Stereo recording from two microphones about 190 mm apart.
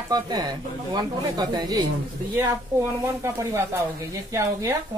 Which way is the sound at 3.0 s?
15° right (ahead or behind).